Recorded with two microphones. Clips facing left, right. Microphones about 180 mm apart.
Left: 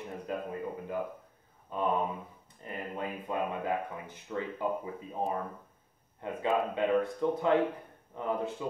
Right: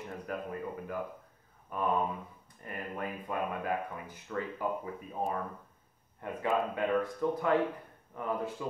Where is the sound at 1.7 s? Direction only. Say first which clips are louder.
Left 1 dB; 20° left (ahead or behind).